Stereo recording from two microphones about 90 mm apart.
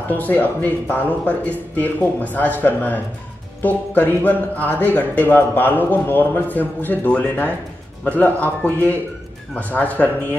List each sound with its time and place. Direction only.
0.1 s speech: 20° left (ahead or behind)